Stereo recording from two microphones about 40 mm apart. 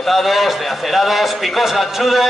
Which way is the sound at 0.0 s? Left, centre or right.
Centre.